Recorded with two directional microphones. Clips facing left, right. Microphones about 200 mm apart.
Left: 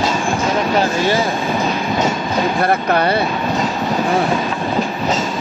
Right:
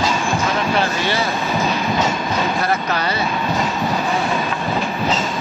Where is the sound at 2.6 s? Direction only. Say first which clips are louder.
Left 5 dB; 55° left (ahead or behind).